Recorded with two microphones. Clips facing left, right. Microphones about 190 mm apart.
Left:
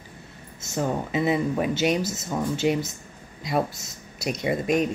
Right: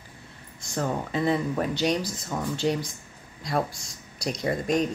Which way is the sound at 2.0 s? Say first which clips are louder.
Left 3 dB; 20° left (ahead or behind).